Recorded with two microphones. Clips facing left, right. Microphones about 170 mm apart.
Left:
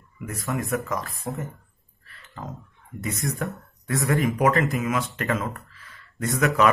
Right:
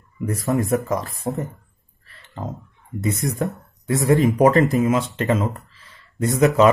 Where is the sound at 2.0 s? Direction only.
30° right (ahead or behind).